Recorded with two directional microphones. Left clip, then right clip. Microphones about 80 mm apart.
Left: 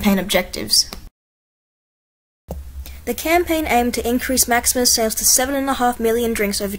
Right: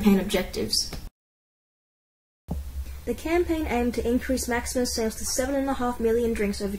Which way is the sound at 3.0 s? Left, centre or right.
Left.